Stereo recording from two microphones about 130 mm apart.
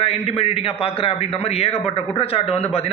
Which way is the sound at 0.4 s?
50° left (ahead or behind).